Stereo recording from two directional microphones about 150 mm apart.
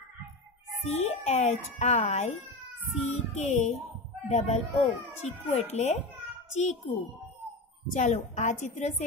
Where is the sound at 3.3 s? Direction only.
50° left (ahead or behind).